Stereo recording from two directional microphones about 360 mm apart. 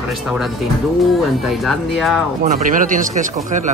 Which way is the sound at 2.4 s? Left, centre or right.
Right.